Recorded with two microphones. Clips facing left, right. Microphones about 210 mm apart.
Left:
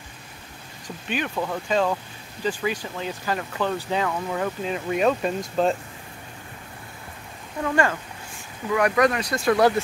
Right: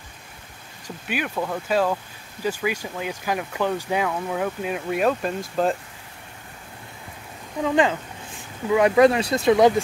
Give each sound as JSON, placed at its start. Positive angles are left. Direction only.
{"t": 0.8, "sound": "speech", "side_deg": -10}
{"t": 7.6, "sound": "speech", "side_deg": -15}